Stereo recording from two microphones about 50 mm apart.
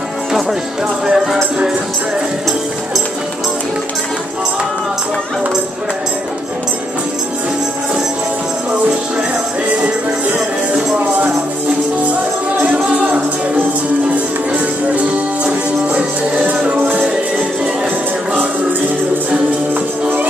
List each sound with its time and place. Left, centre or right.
1.0 s music: centre
12.6 s music: right
18.3 s music: right